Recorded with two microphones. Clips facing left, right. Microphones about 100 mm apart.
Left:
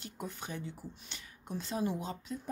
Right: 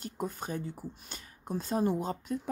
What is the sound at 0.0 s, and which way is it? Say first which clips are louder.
Speech: right 6 dB; 40° right (ahead or behind).